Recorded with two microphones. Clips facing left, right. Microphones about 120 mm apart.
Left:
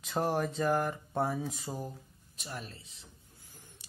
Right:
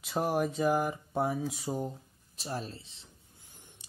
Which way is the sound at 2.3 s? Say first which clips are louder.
Right 6 dB; 35° right (ahead or behind).